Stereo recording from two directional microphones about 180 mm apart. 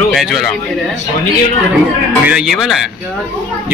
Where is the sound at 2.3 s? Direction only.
5° right (ahead or behind).